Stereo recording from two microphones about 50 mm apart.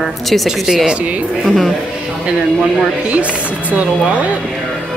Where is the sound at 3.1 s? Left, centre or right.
Right.